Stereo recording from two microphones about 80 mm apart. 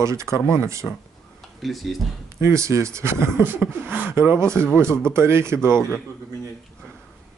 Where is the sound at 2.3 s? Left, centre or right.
Right.